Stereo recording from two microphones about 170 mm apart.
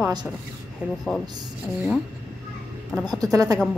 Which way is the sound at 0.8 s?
10° right (ahead or behind).